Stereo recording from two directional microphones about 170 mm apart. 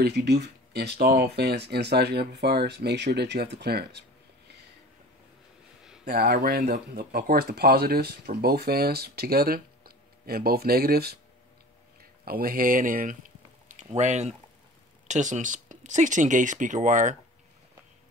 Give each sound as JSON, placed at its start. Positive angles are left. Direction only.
{"t": 0.0, "sound": "speech", "side_deg": -75}
{"t": 6.0, "sound": "speech", "side_deg": -65}